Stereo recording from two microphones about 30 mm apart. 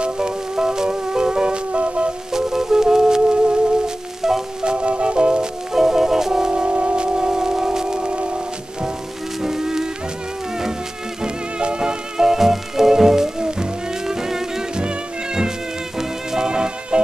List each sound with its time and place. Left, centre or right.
0.0 s music: right
2.3 s music: centre
4.2 s music: centre
4.6 s music: right
5.7 s music: centre
6.5 s music: right
8.1 s music: right
9.4 s a sound: centre
11.2 s music: right; by 14.6 s centre
14.8 s music: right